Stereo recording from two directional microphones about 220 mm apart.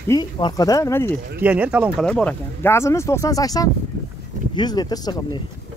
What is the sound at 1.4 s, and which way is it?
Speech, 5° right (ahead or behind).